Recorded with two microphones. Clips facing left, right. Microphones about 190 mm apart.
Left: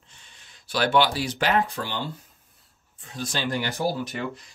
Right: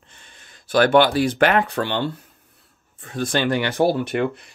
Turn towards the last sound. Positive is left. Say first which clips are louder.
# right 8 dB
turn(degrees=-60)  # may be behind; listen again after turning